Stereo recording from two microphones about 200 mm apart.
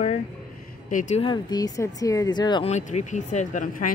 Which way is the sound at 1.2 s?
20° left (ahead or behind).